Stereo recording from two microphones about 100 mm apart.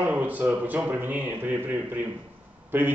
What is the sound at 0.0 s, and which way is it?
Speech, 15° right (ahead or behind).